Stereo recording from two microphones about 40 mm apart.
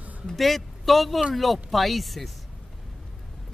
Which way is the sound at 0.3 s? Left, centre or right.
Centre.